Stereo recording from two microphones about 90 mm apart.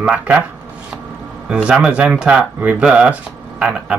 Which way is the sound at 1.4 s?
10° right (ahead or behind).